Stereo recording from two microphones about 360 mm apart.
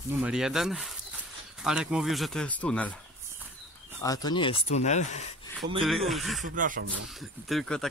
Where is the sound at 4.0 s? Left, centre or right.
Centre.